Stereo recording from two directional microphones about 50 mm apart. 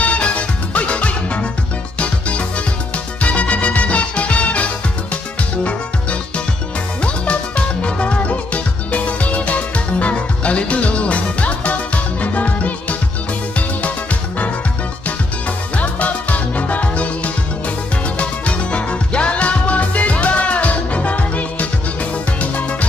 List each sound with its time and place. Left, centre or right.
0.0 s music: left
15.7 s music: left